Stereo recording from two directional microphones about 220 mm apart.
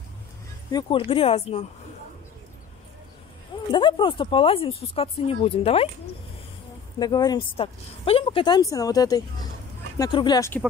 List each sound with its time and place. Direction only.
0.7 s speech: 20° left (ahead or behind)
3.7 s speech: 20° left (ahead or behind)
7.0 s speech: 20° left (ahead or behind)